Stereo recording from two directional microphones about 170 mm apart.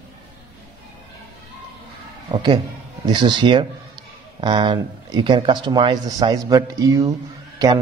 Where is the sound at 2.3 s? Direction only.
25° right (ahead or behind).